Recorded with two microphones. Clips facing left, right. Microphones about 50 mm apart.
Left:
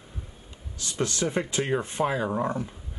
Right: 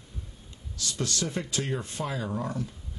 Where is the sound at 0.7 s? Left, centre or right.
Left.